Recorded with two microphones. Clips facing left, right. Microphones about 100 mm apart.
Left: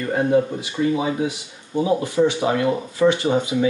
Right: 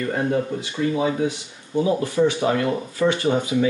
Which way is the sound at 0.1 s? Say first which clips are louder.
Left 7 dB; 15° left (ahead or behind).